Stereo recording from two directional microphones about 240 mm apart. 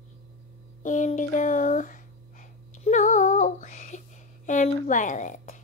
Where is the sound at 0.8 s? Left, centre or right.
Left.